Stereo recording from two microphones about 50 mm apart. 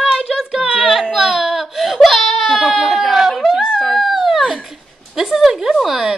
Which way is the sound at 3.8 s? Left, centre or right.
Centre.